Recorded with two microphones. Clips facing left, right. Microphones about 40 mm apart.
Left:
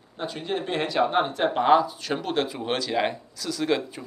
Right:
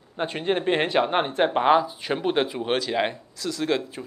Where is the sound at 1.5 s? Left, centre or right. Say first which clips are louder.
Left 2 dB; centre.